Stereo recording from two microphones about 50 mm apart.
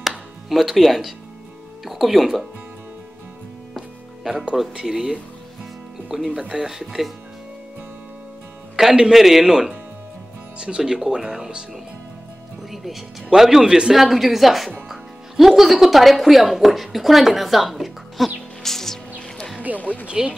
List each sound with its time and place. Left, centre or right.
0.5 s speech: centre
3.7 s music: centre
4.6 s speech: centre
5.1 s music: centre
6.5 s speech: centre
8.8 s speech: centre
9.1 s speech: centre
10.8 s speech: centre
18.6 s music: centre
19.7 s a sound: right
20.1 s speech: right